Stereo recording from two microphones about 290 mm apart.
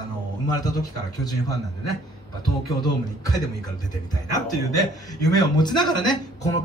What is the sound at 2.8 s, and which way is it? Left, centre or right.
Speech, centre.